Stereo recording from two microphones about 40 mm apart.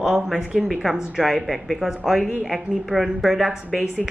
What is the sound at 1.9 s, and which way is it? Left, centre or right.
A woman's voice, centre.